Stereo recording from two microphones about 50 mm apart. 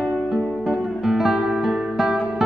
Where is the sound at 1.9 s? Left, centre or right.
Centre.